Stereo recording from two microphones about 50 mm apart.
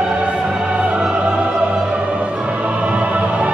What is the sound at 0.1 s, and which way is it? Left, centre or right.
Music, right.